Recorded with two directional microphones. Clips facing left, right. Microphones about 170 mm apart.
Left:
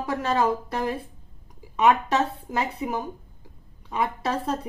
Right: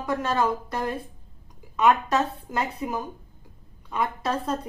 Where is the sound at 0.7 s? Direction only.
Centre (ahead or behind).